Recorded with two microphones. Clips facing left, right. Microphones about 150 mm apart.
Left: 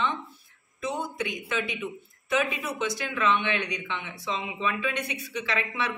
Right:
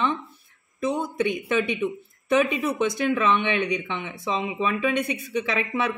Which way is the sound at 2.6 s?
55° right (ahead or behind).